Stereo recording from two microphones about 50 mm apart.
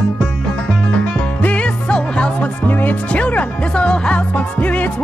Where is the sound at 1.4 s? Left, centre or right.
Left.